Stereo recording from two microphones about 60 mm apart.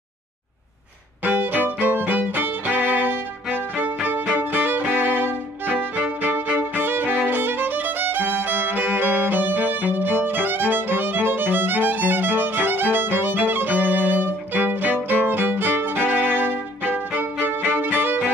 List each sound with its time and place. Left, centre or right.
1.2 s violin: right